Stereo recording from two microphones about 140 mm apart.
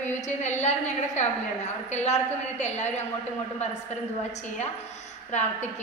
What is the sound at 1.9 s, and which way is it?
A woman's voice, 55° left (ahead or behind).